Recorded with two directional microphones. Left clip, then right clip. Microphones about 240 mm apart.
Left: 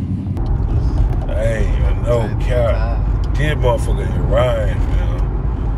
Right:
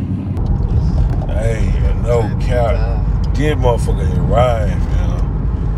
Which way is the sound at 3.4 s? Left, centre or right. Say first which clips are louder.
Right 2 dB; centre.